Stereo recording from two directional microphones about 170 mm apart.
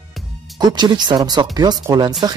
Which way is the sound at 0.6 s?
25° right (ahead or behind).